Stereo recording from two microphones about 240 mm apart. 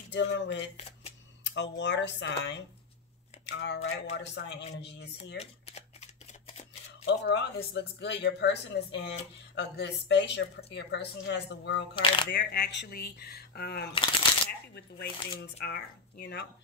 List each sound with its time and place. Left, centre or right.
0.1 s speech: left
0.7 s a sound: left
1.4 s speech: left
5.4 s a sound: left
7.1 s speech: left
11.9 s speech: left
12.3 s speech: left
15.0 s speech: left